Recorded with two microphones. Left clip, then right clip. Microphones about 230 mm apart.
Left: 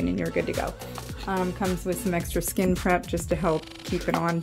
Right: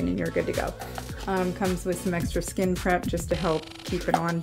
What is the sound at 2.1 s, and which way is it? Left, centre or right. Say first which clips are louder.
Speech: left 1 dB; left.